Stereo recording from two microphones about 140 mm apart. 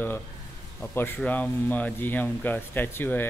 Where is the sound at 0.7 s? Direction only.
15° left (ahead or behind).